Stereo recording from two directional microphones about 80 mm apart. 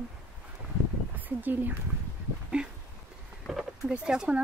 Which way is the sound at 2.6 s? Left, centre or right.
Centre.